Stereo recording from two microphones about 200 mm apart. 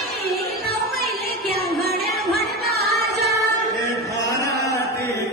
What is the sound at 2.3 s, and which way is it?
Music, 50° right (ahead or behind).